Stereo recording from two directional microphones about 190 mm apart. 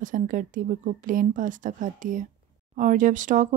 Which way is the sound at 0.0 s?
45° right (ahead or behind).